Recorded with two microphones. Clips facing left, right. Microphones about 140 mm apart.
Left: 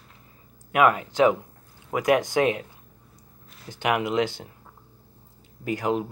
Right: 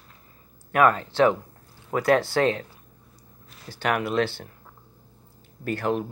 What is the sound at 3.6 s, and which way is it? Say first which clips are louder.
Speech: left 1 dB; 15° left (ahead or behind).